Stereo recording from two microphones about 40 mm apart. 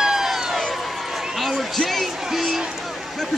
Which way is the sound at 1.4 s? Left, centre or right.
Centre.